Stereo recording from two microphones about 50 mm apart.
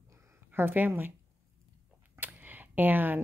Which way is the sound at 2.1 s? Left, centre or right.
Right.